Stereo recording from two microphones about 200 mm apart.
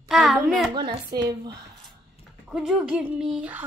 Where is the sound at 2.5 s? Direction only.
5° right (ahead or behind).